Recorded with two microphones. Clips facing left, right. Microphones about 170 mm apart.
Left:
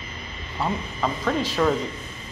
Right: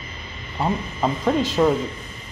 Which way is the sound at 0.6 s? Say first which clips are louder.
Right 3 dB; 20° right (ahead or behind).